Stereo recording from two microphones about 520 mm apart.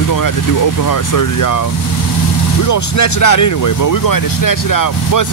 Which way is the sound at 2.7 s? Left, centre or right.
Left.